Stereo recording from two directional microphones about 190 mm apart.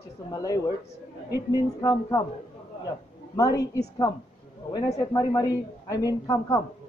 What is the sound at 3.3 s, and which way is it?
A woman's voice, 20° left (ahead or behind).